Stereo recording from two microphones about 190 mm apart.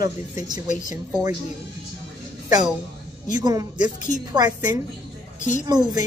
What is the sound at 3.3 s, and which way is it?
A woman's voice, 20° right (ahead or behind).